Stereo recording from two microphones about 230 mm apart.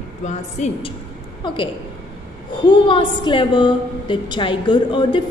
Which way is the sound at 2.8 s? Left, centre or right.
Left.